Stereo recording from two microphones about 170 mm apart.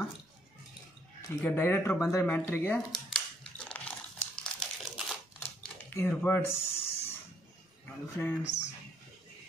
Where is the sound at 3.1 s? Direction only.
5° left (ahead or behind).